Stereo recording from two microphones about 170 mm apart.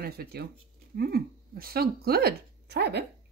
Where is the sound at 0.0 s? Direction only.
65° right (ahead or behind).